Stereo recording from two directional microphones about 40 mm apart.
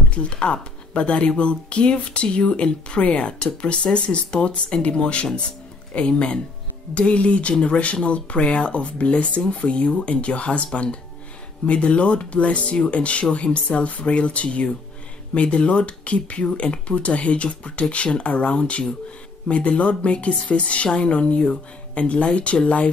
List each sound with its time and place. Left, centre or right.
0.1 s speech: left